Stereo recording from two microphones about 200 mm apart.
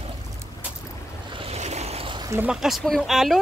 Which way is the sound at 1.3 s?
30° right (ahead or behind).